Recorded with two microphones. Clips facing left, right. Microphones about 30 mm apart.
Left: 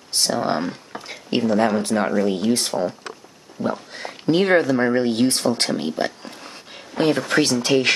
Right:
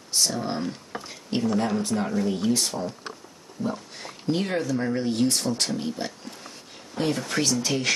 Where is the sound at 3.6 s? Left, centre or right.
Left.